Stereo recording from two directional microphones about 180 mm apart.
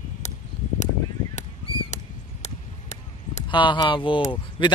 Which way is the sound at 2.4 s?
40° left (ahead or behind).